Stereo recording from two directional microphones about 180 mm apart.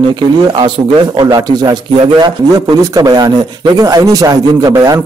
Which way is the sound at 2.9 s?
20° right (ahead or behind).